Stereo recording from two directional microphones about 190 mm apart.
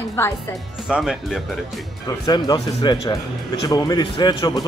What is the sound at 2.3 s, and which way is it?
A man's voice, 20° left (ahead or behind).